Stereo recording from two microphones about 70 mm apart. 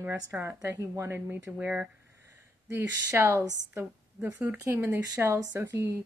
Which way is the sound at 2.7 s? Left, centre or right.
Right.